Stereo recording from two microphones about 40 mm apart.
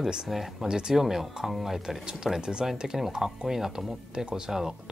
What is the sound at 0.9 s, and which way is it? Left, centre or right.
Speech, centre.